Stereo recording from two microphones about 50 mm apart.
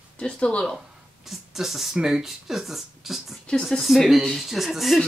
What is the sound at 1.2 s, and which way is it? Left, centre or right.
Speech, centre.